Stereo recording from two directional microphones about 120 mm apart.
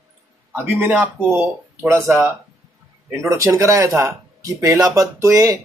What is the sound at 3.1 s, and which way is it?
Speech, 25° right (ahead or behind).